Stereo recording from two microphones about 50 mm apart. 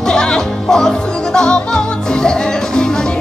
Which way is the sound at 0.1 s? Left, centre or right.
Centre.